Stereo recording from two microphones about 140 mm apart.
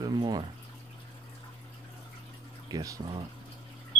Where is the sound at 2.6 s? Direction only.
25° right (ahead or behind).